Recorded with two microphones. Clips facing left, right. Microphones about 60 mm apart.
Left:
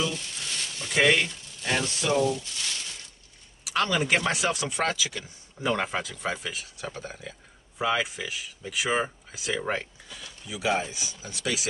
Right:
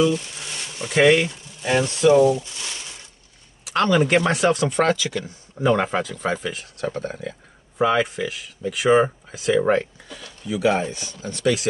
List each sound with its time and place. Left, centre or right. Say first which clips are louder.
0.1 s a sound: right 8 dB; centre
0.9 s speech: right 6 dB; centre
3.6 s speech: right 7 dB; centre